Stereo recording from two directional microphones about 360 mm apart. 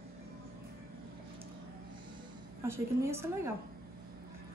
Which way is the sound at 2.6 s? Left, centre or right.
Centre.